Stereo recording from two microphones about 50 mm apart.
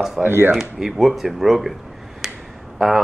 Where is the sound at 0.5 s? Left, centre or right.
Centre.